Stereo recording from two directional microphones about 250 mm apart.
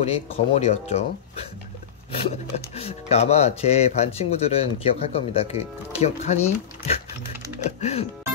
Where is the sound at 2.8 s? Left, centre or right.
Left.